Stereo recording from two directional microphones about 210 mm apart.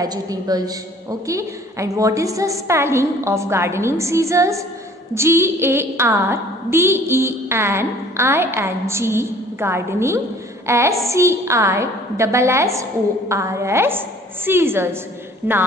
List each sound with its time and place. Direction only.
0.0 s a woman's voice: 15° right (ahead or behind)